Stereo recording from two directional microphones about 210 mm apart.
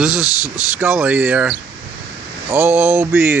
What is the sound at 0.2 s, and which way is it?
Speech, 15° left (ahead or behind).